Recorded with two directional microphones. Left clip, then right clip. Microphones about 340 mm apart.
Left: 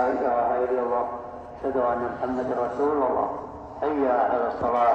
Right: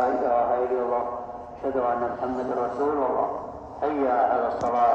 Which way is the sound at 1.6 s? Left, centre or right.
Centre.